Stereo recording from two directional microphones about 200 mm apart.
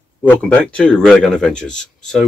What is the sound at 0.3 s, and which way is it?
Speech, 5° left (ahead or behind).